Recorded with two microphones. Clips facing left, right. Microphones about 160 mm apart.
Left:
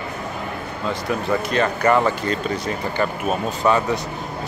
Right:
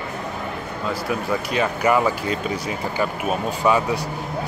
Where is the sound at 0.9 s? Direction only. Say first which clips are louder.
Left 2 dB; 5° right (ahead or behind).